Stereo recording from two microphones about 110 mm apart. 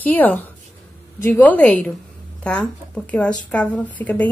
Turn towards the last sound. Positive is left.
turn(degrees=15)  # may be behind; listen again after turning